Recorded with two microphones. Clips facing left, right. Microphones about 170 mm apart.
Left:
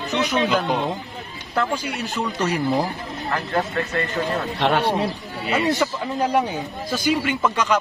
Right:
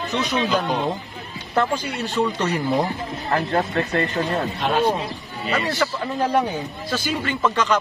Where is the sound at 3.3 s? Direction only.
35° right (ahead or behind).